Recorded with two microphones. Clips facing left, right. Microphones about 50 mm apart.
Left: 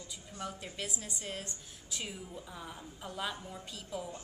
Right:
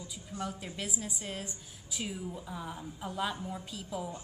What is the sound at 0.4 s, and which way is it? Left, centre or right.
A woman's voice, centre.